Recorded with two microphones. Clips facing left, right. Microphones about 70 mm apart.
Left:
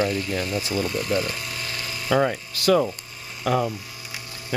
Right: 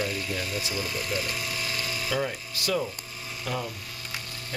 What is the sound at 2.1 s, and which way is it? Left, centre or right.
Speech, left.